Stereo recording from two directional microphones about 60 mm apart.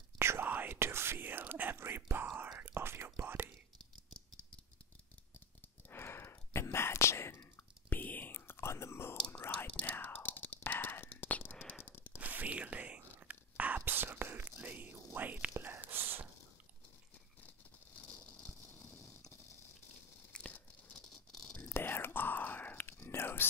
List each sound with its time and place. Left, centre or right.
0.4 s whispering: right
0.7 s whispering: right
5.9 s whispering: left
9.7 s whispering: left
11.8 s a sound: left
12.2 s whispering: right
13.8 s whispering: right
15.5 s whispering: right
15.9 s snort: right
17.9 s a sound: left
18.7 s a sound: left
20.3 s tearing: centre
21.0 s rattle: centre
21.5 s whispering: left